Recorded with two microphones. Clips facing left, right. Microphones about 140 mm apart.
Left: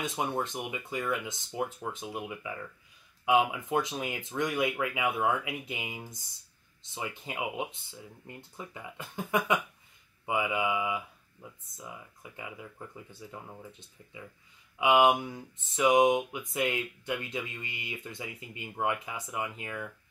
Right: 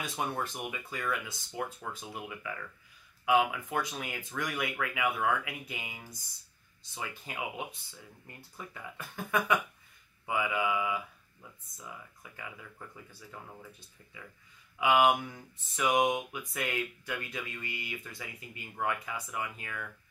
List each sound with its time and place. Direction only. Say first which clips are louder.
0.0 s speech: left 3 dB; 20° left (ahead or behind)